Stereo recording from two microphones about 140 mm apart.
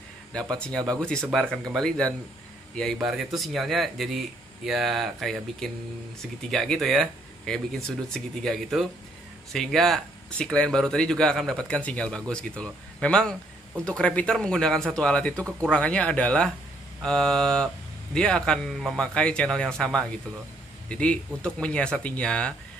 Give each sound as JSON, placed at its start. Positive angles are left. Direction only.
{"t": 0.3, "sound": "speech", "side_deg": 5}